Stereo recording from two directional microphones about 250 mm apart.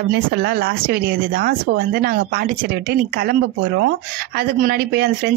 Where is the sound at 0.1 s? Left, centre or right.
Right.